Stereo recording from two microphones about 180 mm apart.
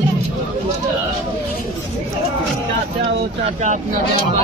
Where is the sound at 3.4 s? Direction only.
40° right (ahead or behind).